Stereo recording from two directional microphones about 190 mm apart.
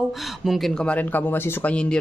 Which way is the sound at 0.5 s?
Centre (ahead or behind).